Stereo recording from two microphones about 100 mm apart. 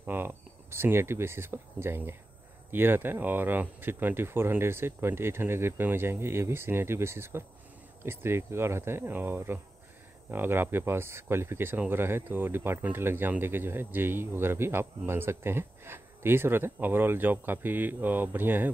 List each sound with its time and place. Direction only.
0.0 s speech: 20° right (ahead or behind)